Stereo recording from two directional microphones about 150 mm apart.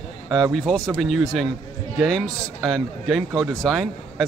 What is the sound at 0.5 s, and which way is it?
A man's voice, 5° left (ahead or behind).